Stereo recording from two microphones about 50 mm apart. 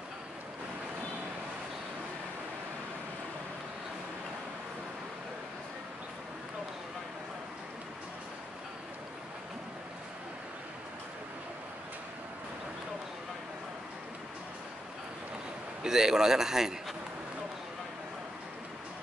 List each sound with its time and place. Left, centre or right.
15.8 s a man's voice: centre